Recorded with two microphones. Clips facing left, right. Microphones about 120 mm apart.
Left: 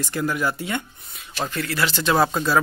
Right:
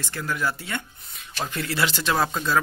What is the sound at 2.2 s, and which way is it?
Speech, 10° left (ahead or behind).